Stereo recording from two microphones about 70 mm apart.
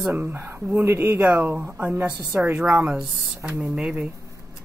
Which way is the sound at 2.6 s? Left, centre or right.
Centre.